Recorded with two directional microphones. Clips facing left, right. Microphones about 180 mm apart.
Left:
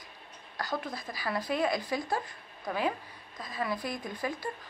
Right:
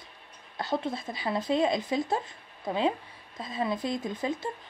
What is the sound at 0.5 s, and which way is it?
Speech, 25° right (ahead or behind).